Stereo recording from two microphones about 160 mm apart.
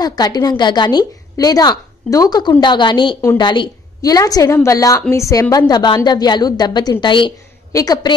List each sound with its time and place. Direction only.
0.0 s a woman's voice: 25° left (ahead or behind)